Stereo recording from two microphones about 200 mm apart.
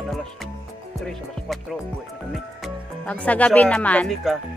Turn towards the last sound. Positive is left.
turn(degrees=5)  # may be behind; listen again after turning